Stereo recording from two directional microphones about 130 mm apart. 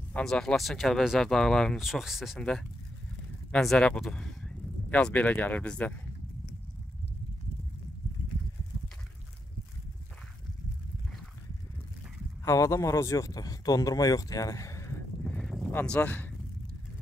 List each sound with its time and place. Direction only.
0.1 s speech: 5° left (ahead or behind)
3.5 s speech: 5° left (ahead or behind)
12.4 s speech: 20° left (ahead or behind)
15.2 s a sound: 5° left (ahead or behind)
15.7 s speech: 10° left (ahead or behind)